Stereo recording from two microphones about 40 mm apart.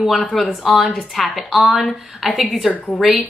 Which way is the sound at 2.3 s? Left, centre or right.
Centre.